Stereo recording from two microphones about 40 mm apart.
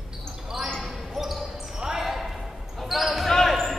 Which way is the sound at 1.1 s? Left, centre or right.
Centre.